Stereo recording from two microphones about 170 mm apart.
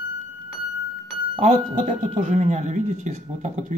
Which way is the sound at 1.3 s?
35° right (ahead or behind).